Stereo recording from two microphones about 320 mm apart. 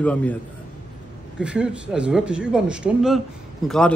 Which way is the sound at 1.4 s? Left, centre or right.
Centre.